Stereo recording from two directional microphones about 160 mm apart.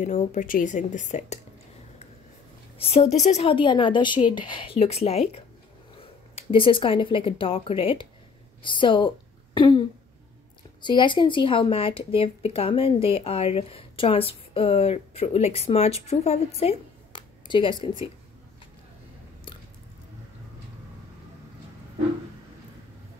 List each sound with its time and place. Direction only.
0.0 s speech: 45° left (ahead or behind)
2.8 s a woman's voice: 35° left (ahead or behind)